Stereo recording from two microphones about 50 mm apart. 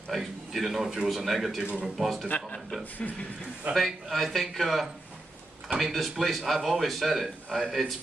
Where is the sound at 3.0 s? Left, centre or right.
Left.